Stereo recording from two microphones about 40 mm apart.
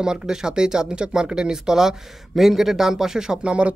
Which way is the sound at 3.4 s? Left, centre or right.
Right.